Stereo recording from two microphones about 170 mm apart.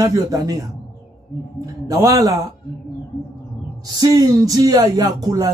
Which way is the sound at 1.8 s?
20° right (ahead or behind).